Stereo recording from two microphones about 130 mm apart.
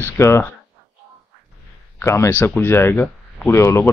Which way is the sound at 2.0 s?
20° left (ahead or behind).